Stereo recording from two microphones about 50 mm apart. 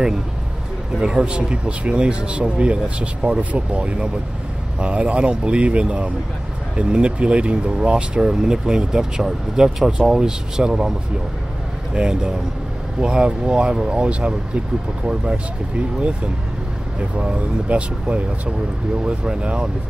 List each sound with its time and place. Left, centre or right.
1.0 s speech: right
8.2 s speech: centre
17.2 s speech: right